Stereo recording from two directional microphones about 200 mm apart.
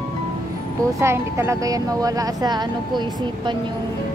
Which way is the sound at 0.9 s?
10° right (ahead or behind).